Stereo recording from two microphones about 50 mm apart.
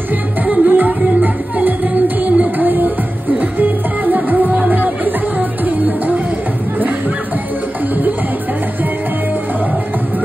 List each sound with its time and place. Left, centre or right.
0.5 s music: right
2.2 s music: right
2.6 s music: right